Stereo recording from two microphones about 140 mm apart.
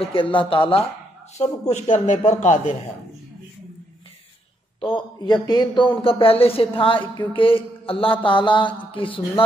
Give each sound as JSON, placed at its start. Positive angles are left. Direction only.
{"t": 0.0, "sound": "speech", "side_deg": 40}
{"t": 1.4, "sound": "a man's voice", "side_deg": 55}
{"t": 4.7, "sound": "speech", "side_deg": 35}